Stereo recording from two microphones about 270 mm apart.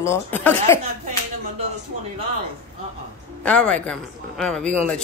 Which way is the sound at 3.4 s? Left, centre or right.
Centre.